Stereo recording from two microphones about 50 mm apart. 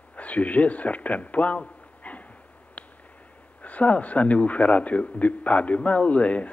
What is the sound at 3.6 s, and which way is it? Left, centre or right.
A man's voice, left.